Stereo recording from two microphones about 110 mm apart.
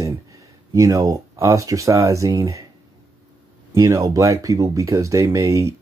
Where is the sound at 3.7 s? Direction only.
30° right (ahead or behind).